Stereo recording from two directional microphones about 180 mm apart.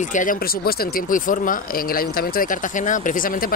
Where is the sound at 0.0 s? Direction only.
45° left (ahead or behind).